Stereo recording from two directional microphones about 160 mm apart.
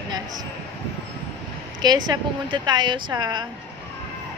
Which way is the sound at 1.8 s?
25° right (ahead or behind).